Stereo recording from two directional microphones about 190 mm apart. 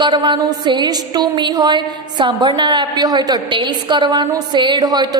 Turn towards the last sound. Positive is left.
turn(degrees=-20)  # may be behind; listen again after turning